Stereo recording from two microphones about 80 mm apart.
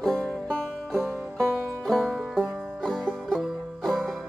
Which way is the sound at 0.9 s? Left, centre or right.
Right.